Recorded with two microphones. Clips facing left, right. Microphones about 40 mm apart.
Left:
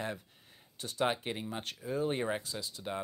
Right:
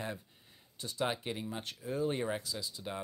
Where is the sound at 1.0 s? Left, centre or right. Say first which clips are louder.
Left 3 dB; left.